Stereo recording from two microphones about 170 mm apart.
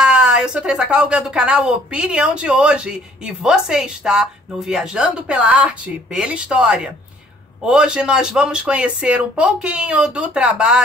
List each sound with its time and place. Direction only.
0.0 s speech: 5° right (ahead or behind)